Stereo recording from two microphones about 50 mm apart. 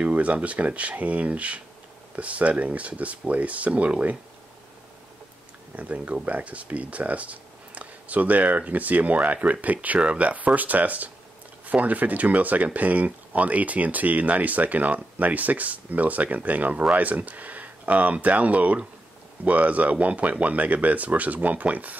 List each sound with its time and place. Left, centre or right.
0.0 s speech: right
5.8 s speech: right